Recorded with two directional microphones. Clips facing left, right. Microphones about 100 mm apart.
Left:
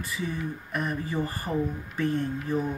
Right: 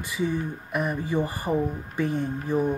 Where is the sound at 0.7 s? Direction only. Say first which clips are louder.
Right 4 dB; 15° right (ahead or behind).